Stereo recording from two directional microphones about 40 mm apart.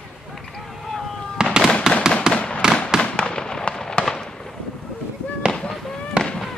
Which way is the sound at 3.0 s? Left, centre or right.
Left.